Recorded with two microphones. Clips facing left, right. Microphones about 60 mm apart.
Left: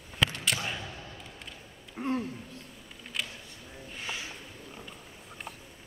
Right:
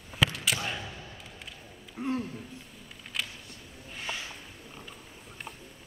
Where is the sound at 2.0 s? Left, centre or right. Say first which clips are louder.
Even; left.